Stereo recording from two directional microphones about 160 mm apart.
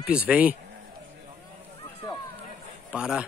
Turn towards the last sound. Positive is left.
turn(degrees=-5)  # may be behind; listen again after turning